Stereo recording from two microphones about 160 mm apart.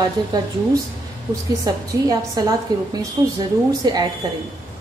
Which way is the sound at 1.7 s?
20° right (ahead or behind).